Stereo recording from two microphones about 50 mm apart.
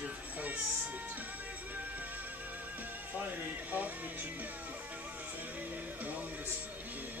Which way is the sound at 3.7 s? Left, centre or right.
Right.